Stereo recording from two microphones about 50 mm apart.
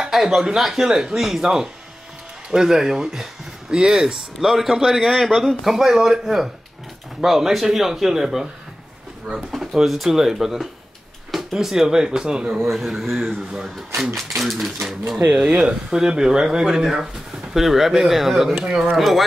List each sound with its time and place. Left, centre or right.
0.0 s speech: centre
9.5 s speech: centre
12.7 s speech: centre
15.4 s speech: centre